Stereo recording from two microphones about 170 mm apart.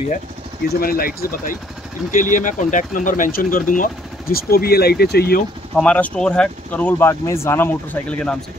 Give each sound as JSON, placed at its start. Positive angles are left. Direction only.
{"t": 0.7, "sound": "speech", "side_deg": 60}
{"t": 5.8, "sound": "speech", "side_deg": 5}